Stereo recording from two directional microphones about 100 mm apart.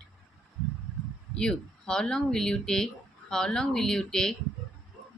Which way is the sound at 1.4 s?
10° left (ahead or behind).